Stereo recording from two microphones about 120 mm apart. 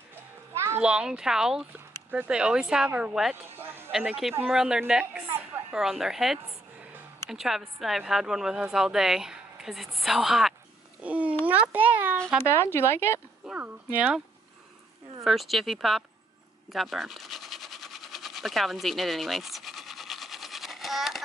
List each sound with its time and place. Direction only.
0.7 s a woman's voice: 10° right (ahead or behind)
3.5 s a sound: 20° right (ahead or behind)
3.9 s a woman's voice: 5° right (ahead or behind)
11.0 s babbling: 10° right (ahead or behind)
11.4 s speech: 15° right (ahead or behind)
12.5 s speech: 20° left (ahead or behind)
13.4 s a sound: 5° right (ahead or behind)
13.9 s speech: 10° right (ahead or behind)
15.2 s a woman's voice: centre (ahead or behind)
16.7 s a sound: centre (ahead or behind)